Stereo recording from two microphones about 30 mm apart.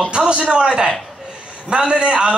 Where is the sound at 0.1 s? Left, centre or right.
Right.